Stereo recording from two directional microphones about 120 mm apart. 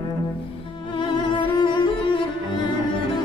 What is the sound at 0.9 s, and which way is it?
Music, 40° left (ahead or behind).